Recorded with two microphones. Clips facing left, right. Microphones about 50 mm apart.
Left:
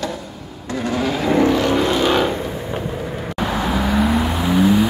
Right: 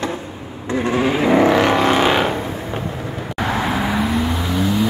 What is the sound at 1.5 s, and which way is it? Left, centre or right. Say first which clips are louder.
Vehicle: right 3 dB; right.